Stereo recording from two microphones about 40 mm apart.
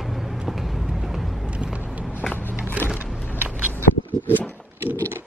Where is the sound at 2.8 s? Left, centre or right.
Right.